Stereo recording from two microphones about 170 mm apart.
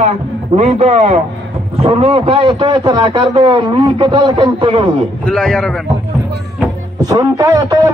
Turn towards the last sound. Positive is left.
turn(degrees=-20)  # may be behind; listen again after turning